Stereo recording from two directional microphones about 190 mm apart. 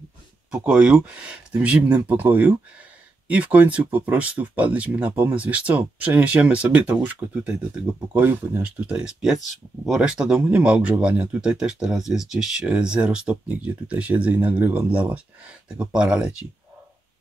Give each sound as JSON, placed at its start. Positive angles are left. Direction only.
{"t": 0.5, "sound": "speech", "side_deg": -5}